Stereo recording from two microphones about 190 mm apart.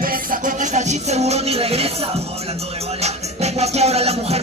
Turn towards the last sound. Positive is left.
turn(degrees=-35)  # may be behind; listen again after turning